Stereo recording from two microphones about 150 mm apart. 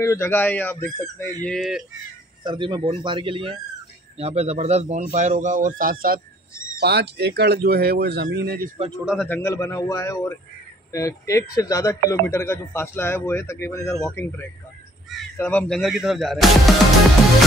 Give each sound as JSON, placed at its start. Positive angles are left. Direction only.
{"t": 0.0, "sound": "speech", "side_deg": 15}
{"t": 1.5, "sound": "speech", "side_deg": -5}
{"t": 2.4, "sound": "a man's voice", "side_deg": -30}
{"t": 6.8, "sound": "speech", "side_deg": -90}
{"t": 9.0, "sound": "speech", "side_deg": 0}
{"t": 9.3, "sound": "a man's voice", "side_deg": 20}
{"t": 15.3, "sound": "a man's voice", "side_deg": 15}
{"t": 15.7, "sound": "speech", "side_deg": 0}